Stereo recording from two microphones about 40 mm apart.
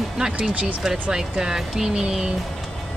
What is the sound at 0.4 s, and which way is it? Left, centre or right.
Speech, right.